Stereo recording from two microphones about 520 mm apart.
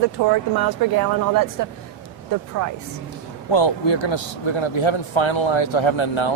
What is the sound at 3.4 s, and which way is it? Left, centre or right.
A man's voice, left.